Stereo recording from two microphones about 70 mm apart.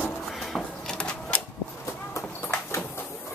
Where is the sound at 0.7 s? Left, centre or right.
Centre.